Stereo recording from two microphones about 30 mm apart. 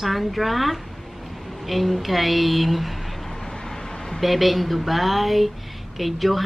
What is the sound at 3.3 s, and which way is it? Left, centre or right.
Vehicle, centre.